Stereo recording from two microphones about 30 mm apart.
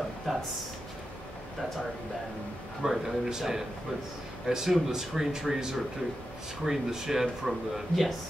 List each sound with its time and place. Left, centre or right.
0.3 s speech: centre
2.8 s speech: centre
4.6 s speech: centre